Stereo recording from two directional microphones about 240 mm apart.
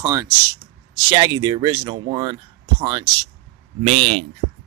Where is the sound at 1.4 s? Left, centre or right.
Centre.